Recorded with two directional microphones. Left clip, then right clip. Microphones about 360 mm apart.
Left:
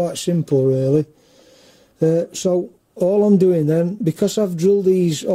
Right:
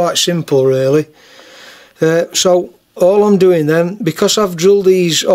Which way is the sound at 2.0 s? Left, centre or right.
Right.